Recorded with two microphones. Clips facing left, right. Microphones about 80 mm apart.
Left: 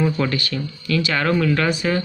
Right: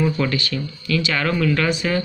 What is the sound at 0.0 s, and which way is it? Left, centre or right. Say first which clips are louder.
Speech: even; left.